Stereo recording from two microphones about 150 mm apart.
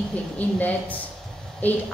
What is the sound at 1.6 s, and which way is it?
Speech, 10° left (ahead or behind).